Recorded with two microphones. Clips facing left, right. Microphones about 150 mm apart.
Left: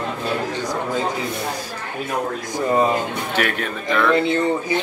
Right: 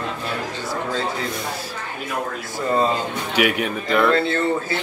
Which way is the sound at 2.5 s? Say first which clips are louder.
Left 2 dB; 15° left (ahead or behind).